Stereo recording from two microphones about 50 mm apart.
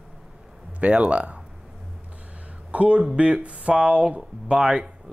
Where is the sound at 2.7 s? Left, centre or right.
Right.